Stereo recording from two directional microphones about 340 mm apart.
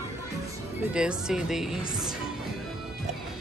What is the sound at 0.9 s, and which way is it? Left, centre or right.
Speech, centre.